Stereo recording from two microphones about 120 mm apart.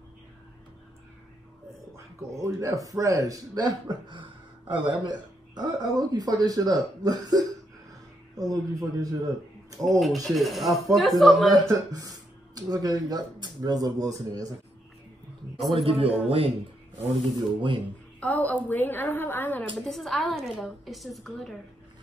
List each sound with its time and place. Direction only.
2.0 s a man's voice: 25° right (ahead or behind)
9.8 s a woman's voice: centre (ahead or behind)
11.7 s speech: 30° right (ahead or behind)
15.7 s a man's voice: 50° right (ahead or behind)
17.6 s a man's voice: 45° right (ahead or behind)
18.2 s a woman's voice: 15° left (ahead or behind)
19.8 s a woman's voice: centre (ahead or behind)